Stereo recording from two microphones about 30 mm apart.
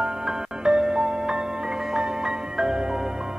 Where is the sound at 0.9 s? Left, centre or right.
Right.